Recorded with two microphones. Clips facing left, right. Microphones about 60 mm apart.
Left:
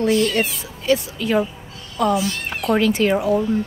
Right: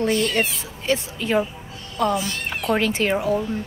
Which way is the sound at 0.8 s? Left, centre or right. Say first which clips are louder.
Left 4 dB; right.